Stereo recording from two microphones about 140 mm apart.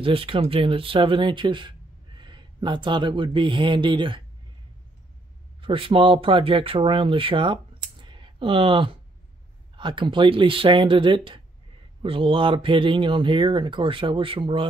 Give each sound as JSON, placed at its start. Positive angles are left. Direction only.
{"t": 0.0, "sound": "speech", "side_deg": -40}
{"t": 5.6, "sound": "speech", "side_deg": -40}